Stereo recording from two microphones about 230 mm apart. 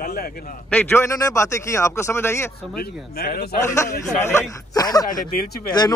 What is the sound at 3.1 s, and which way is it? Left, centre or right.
Speech, left.